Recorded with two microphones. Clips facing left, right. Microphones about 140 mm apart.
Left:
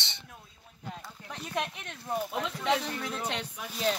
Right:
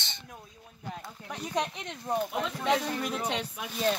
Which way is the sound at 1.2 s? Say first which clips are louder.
Right 3 dB; 10° right (ahead or behind).